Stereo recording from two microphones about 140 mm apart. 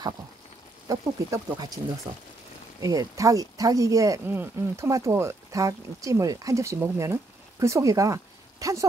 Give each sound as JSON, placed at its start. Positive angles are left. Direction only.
{"t": 0.8, "sound": "speech", "side_deg": -25}
{"t": 2.8, "sound": "speech", "side_deg": -25}